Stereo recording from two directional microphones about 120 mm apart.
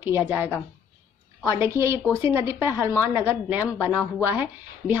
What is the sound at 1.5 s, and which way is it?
A woman's voice, 25° right (ahead or behind).